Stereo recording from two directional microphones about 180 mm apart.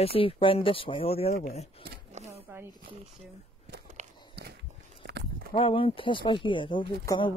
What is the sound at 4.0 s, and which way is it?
Walk, 40° right (ahead or behind).